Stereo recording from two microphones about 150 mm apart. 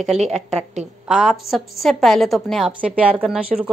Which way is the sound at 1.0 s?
Centre (ahead or behind).